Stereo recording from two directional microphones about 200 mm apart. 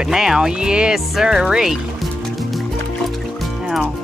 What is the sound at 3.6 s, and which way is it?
Music, 5° right (ahead or behind).